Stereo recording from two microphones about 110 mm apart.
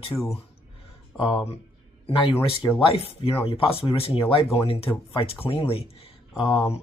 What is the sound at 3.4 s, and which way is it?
Speech, 55° left (ahead or behind).